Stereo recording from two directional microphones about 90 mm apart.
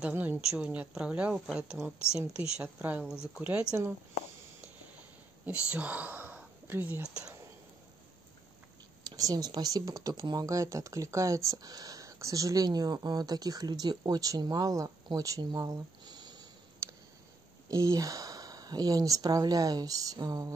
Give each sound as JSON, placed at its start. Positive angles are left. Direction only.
{"t": 0.0, "sound": "a woman's voice", "side_deg": -15}
{"t": 3.7, "sound": "speech", "side_deg": -20}
{"t": 5.7, "sound": "speech", "side_deg": -15}
{"t": 9.1, "sound": "speech", "side_deg": -45}
{"t": 16.8, "sound": "a sound", "side_deg": -30}
{"t": 17.6, "sound": "speech", "side_deg": -40}